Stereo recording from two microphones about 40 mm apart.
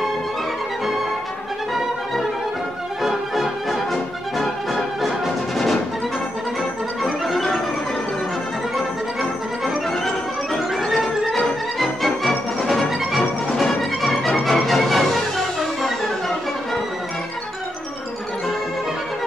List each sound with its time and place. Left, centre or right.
3.0 s music: centre
4.7 s music: centre
10.9 s music: centre